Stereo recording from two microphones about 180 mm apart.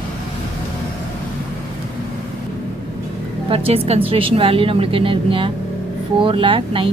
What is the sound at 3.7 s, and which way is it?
A woman's voice, 30° right (ahead or behind).